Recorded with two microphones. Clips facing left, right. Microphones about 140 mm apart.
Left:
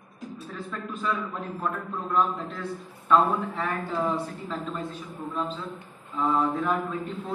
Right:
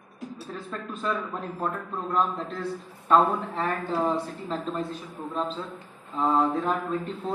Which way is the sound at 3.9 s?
35° right (ahead or behind).